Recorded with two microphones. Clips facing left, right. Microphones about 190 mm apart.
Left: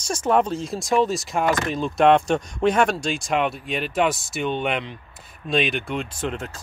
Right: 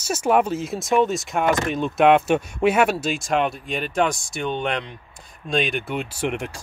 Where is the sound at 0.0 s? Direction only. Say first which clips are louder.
Right 1 dB; 5° right (ahead or behind).